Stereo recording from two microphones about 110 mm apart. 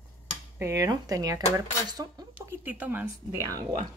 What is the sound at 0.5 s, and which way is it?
Speech, 30° right (ahead or behind).